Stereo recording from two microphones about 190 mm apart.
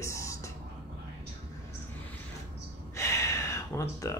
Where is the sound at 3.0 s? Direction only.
15° left (ahead or behind).